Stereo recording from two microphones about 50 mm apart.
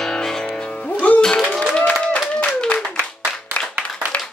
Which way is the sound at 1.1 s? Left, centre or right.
Left.